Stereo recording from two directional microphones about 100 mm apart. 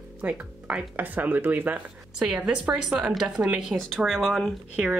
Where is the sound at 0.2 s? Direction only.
15° right (ahead or behind).